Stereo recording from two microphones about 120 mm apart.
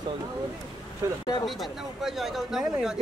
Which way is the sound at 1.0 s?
30° right (ahead or behind).